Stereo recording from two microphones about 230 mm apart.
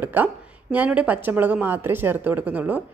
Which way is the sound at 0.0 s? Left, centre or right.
Centre.